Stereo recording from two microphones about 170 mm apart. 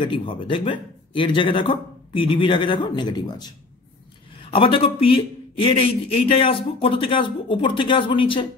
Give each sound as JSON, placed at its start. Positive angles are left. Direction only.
{"t": 0.0, "sound": "speech", "side_deg": 30}
{"t": 4.6, "sound": "a man's voice", "side_deg": 30}